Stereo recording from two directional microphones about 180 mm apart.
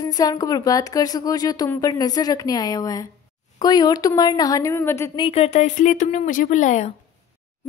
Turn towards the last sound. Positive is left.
turn(degrees=40)  # may be behind; listen again after turning